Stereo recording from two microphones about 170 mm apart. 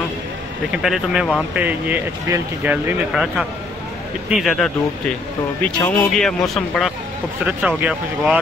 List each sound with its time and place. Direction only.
0.7 s a man's voice: centre (ahead or behind)